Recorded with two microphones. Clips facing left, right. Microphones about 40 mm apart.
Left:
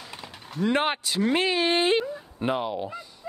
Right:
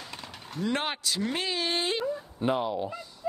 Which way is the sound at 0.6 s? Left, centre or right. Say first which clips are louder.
Left 6 dB; left.